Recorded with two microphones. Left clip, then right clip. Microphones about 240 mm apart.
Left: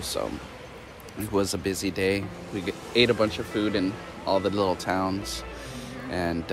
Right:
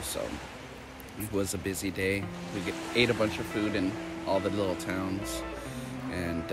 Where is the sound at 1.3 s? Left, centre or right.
Centre.